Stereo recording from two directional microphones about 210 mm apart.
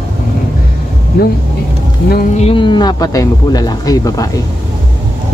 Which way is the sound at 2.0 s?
45° left (ahead or behind).